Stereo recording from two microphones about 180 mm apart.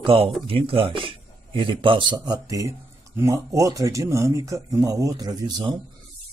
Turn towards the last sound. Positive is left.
turn(degrees=-25)  # may be behind; listen again after turning